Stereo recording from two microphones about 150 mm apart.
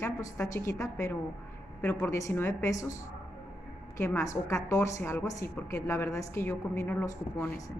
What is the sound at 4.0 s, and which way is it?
A woman's voice, 15° left (ahead or behind).